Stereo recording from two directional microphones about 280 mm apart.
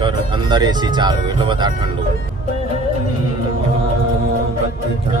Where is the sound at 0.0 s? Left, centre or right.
Centre.